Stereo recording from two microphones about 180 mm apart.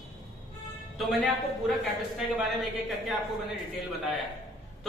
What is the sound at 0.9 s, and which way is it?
Speech, centre (ahead or behind).